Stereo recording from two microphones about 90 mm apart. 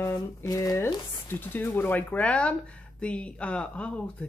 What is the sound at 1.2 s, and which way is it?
Speech, 20° left (ahead or behind).